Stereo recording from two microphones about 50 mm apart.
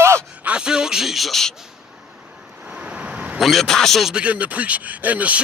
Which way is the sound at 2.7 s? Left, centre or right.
Right.